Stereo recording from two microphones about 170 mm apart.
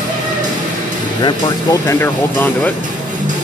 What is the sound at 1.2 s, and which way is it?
Speech, 20° left (ahead or behind).